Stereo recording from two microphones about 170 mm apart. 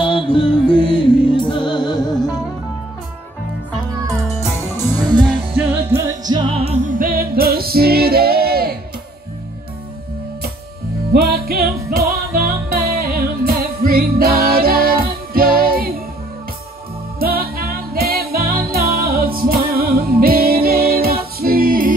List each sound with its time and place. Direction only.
0.0 s music: 30° left (ahead or behind)
4.9 s music: 25° right (ahead or behind)
5.6 s music: 10° right (ahead or behind); by 8.7 s 65° right (ahead or behind)
11.1 s music: 65° right (ahead or behind)
17.2 s music: 60° right (ahead or behind)